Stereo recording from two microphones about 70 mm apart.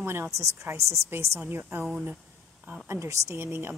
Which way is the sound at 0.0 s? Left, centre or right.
Right.